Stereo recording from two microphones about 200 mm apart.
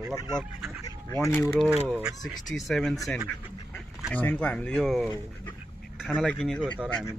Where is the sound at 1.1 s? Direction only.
10° left (ahead or behind).